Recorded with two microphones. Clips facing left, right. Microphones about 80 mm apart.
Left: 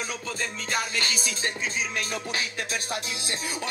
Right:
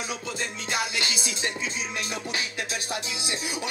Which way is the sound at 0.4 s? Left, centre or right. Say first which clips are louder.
Even; left.